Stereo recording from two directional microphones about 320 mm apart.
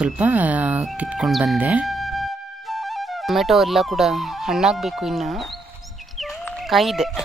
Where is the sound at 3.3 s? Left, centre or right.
Centre.